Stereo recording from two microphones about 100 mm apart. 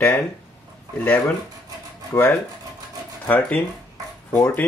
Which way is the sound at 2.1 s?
25° left (ahead or behind).